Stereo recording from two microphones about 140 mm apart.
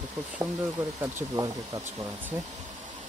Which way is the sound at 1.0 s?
25° right (ahead or behind).